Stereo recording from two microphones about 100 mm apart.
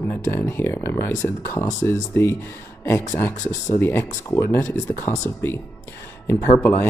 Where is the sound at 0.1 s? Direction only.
25° left (ahead or behind).